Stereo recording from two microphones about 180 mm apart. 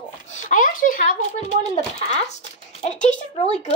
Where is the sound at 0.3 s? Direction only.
45° left (ahead or behind).